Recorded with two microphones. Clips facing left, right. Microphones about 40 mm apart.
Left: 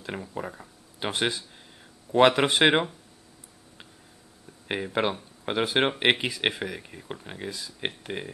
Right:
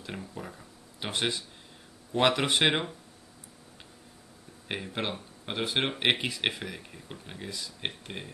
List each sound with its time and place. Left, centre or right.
0.0 s speech: left
4.6 s speech: centre